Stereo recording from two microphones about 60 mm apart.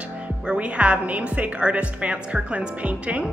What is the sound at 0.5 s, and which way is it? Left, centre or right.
A woman's voice, right.